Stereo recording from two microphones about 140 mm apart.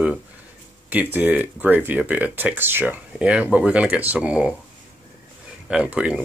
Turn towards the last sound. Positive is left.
turn(degrees=-5)  # may be behind; listen again after turning